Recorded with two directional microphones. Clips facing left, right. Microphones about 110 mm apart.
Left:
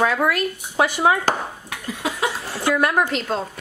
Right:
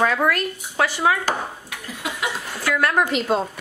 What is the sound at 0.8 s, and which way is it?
Speech, 20° left (ahead or behind).